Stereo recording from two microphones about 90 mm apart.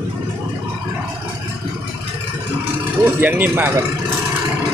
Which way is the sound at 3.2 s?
20° right (ahead or behind).